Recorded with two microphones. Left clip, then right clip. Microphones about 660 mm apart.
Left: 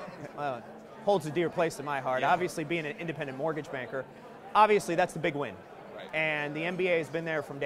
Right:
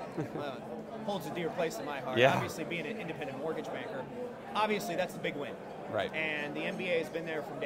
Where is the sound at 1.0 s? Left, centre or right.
Left.